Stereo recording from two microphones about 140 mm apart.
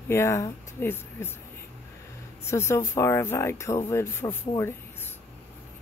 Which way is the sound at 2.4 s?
20° left (ahead or behind).